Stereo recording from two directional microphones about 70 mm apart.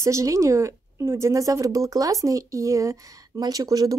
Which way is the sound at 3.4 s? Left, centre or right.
Right.